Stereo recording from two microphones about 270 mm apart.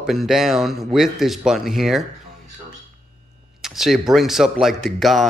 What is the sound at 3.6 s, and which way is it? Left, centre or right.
Speech, centre.